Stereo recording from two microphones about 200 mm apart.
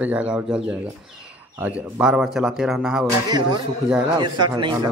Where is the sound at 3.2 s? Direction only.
20° right (ahead or behind).